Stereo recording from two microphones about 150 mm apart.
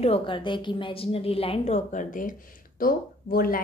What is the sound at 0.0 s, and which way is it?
A woman's voice, 35° left (ahead or behind).